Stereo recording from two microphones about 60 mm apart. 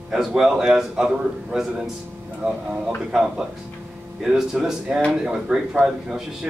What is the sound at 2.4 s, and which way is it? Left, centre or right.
Speech, right.